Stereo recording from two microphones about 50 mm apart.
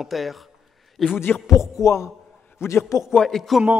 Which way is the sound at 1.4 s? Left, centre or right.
Left.